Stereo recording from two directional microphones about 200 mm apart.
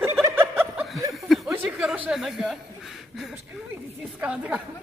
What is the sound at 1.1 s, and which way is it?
Chuckle, centre (ahead or behind).